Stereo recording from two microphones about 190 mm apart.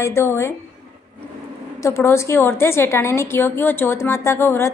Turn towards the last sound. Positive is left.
turn(degrees=15)  # may be behind; listen again after turning